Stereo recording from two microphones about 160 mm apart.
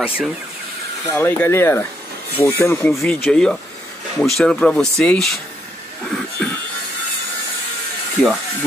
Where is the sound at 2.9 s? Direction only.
5° left (ahead or behind).